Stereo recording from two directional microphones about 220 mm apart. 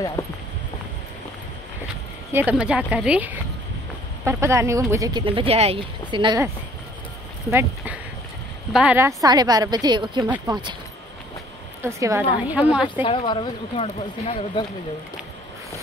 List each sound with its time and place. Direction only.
0.2 s speech: 10° left (ahead or behind)
2.3 s speech: 5° right (ahead or behind)
7.5 s speech: 5° right (ahead or behind)
11.8 s speech: 15° right (ahead or behind)
13.0 s speech: 20° left (ahead or behind)